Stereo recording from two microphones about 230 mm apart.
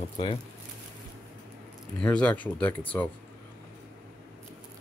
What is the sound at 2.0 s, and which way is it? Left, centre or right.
Speech, centre.